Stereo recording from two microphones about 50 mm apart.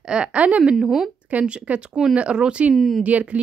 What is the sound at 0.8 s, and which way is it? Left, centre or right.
Speech, centre.